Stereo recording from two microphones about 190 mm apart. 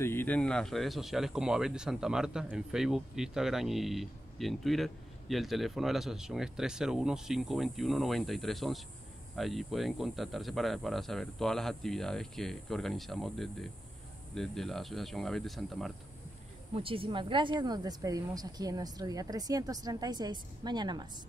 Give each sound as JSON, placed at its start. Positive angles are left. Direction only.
{"t": 0.0, "sound": "speech", "side_deg": 10}
{"t": 16.7, "sound": "speech", "side_deg": -30}